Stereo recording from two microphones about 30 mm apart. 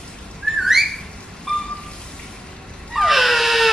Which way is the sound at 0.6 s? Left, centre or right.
Centre.